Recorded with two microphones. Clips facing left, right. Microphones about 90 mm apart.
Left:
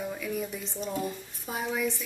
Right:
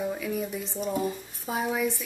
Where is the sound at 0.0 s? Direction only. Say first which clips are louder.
Right 3 dB; 5° right (ahead or behind).